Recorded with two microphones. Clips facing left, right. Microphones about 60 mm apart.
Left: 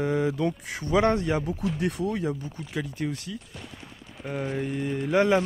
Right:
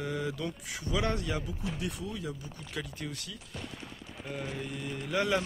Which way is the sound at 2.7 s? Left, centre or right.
Left.